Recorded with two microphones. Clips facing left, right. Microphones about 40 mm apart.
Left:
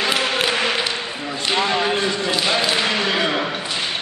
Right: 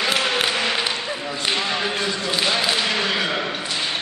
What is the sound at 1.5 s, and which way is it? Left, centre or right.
Basketball bounce, left.